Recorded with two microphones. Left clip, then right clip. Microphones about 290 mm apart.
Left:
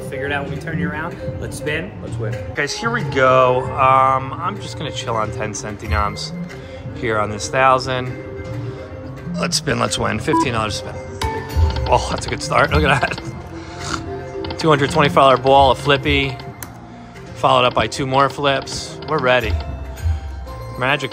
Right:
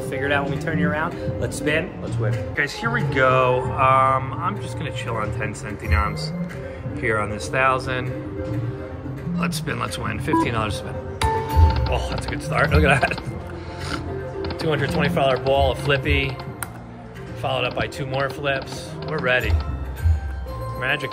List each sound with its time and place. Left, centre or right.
0.1 s speech: centre
2.5 s speech: centre
9.3 s speech: centre
11.9 s speech: centre
14.6 s speech: centre
17.4 s speech: centre
20.8 s speech: centre